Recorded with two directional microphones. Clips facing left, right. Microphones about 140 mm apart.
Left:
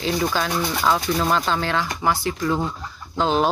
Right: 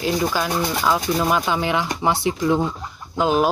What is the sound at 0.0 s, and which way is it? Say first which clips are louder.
Speech: right 1 dB; 10° right (ahead or behind).